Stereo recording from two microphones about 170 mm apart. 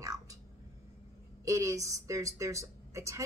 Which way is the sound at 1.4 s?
20° right (ahead or behind).